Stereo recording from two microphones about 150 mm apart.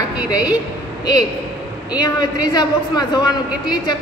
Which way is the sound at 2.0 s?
25° left (ahead or behind).